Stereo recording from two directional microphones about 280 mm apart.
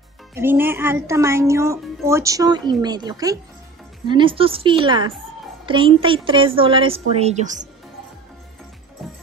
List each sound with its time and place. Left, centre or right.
0.3 s a woman's voice: centre; by 7.6 s right